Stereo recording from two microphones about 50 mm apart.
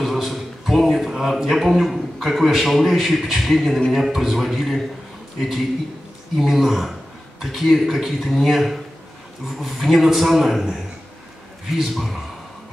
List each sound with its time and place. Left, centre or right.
0.0 s a man's voice: centre
6.4 s a man's voice: centre